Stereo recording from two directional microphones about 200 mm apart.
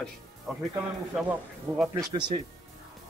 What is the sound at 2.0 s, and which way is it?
Speech, 20° right (ahead or behind).